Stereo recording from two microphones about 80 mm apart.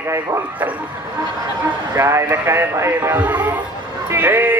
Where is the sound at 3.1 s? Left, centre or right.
Right.